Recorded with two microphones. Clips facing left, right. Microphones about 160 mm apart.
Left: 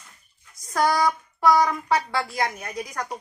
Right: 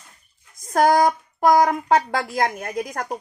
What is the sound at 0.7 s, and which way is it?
Speech, 50° right (ahead or behind).